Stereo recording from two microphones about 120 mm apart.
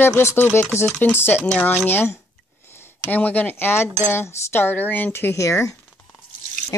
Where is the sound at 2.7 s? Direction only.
20° left (ahead or behind).